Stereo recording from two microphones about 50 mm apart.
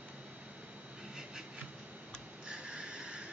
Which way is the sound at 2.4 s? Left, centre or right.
Centre.